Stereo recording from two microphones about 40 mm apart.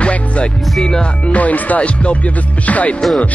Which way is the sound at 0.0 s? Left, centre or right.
Left.